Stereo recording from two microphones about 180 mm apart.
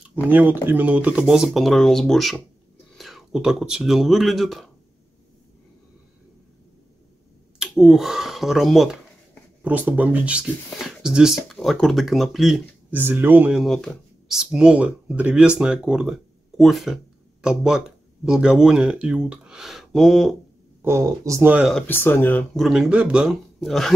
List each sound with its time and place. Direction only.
0.1 s speech: 10° right (ahead or behind)
7.5 s speech: 5° right (ahead or behind)
20.8 s speech: 15° right (ahead or behind)
21.7 s speech: 10° left (ahead or behind)